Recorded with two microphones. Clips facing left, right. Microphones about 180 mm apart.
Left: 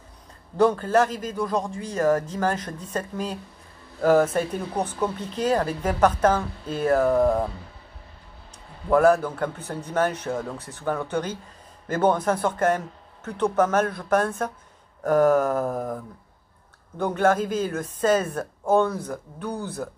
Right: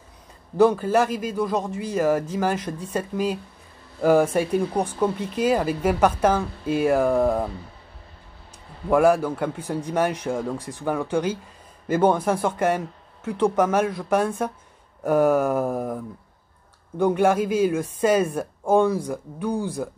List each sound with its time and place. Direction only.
0.6 s speech: 10° right (ahead or behind)
8.9 s speech: 10° right (ahead or behind)
17.0 s speech: 10° right (ahead or behind)